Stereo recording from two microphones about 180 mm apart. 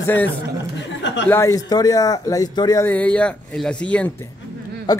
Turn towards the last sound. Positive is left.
turn(degrees=20)  # may be behind; listen again after turning